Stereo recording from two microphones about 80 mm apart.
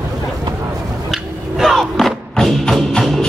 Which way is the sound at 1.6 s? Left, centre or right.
Centre.